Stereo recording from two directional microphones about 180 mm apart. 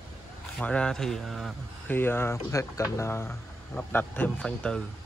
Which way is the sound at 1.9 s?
10° left (ahead or behind).